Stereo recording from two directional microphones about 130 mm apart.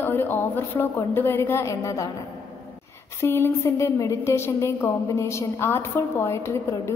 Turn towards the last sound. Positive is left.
turn(degrees=20)  # may be behind; listen again after turning